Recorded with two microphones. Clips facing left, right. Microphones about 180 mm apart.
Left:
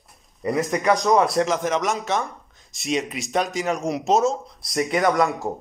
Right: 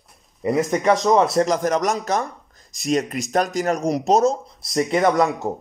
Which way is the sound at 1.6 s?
40° right (ahead or behind).